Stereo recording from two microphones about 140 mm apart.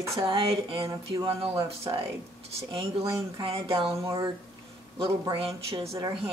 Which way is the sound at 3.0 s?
25° right (ahead or behind).